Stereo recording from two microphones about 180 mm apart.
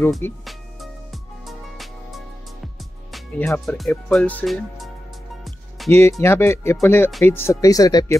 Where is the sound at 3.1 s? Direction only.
10° left (ahead or behind).